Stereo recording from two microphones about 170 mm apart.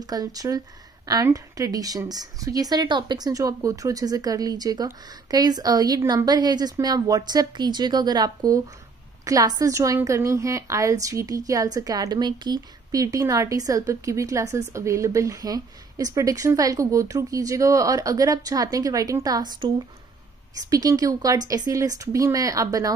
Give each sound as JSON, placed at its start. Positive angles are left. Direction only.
{"t": 0.0, "sound": "a woman's voice", "side_deg": -20}
{"t": 20.5, "sound": "a woman's voice", "side_deg": -20}